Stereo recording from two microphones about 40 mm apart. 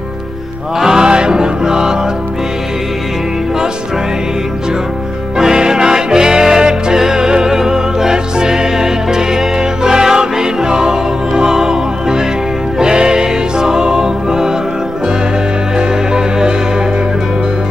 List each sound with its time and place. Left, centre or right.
0.7 s music: centre
5.4 s music: centre
16.1 s music: centre